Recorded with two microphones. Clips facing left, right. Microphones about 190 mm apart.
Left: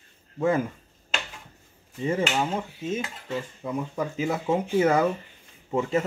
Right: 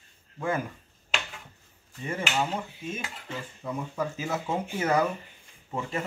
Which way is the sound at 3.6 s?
15° left (ahead or behind).